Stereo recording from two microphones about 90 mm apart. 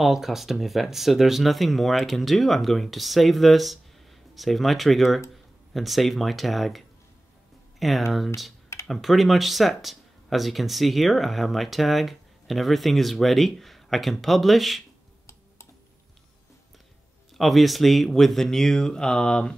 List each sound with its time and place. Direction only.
0.0 s speech: 5° right (ahead or behind)
7.8 s speech: centre (ahead or behind)
17.4 s speech: centre (ahead or behind)